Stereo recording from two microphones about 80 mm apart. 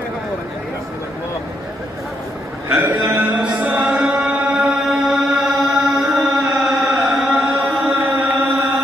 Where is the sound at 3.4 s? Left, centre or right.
Centre.